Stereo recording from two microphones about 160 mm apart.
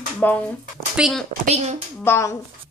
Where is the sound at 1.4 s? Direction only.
45° right (ahead or behind).